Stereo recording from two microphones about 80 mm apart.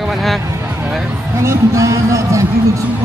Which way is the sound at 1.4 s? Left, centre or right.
Right.